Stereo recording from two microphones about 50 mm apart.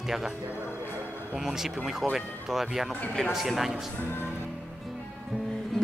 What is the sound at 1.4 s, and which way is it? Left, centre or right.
Speech, centre.